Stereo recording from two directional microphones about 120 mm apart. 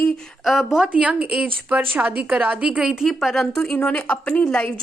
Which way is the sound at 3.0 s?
5° left (ahead or behind).